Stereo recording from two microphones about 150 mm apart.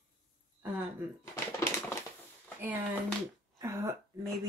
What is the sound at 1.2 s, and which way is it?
Typewriter, 20° left (ahead or behind).